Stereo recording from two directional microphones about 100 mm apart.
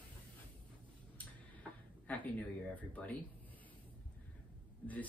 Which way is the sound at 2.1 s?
15° left (ahead or behind).